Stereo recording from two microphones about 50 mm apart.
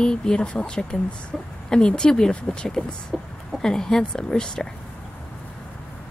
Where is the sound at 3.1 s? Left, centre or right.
Centre.